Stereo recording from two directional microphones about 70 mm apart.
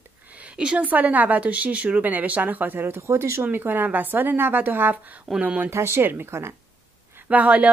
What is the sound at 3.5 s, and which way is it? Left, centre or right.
A woman's voice, right.